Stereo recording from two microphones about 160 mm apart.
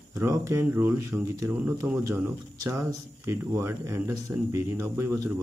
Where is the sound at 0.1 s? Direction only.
15° right (ahead or behind).